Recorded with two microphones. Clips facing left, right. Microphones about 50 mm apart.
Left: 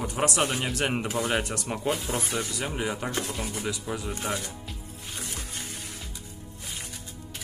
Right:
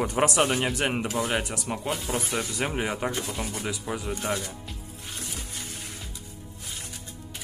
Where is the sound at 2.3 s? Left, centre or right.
Right.